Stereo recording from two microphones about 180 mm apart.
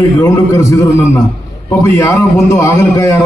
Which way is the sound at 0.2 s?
15° left (ahead or behind).